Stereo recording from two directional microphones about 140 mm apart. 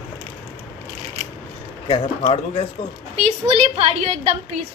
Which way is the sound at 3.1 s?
45° right (ahead or behind).